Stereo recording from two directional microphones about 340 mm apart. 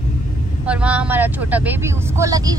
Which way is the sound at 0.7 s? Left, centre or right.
Centre.